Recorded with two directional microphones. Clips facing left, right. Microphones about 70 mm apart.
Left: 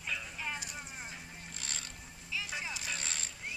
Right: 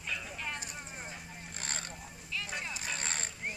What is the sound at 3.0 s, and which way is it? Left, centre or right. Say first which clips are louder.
Vehicle: right 4 dB; right.